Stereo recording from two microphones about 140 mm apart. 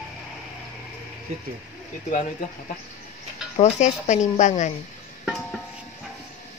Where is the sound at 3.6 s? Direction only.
55° left (ahead or behind).